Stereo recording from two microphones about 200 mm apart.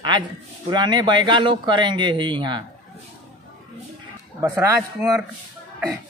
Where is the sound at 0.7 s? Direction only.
20° right (ahead or behind).